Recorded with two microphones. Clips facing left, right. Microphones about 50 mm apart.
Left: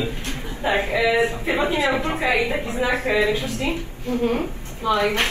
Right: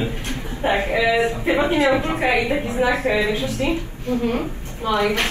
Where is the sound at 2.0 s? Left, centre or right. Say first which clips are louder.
Right 2 dB; right.